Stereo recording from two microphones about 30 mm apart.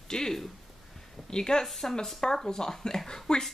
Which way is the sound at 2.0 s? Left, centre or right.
Centre.